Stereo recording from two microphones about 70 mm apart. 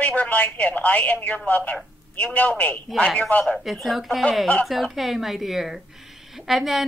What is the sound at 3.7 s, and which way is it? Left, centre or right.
Speech, centre.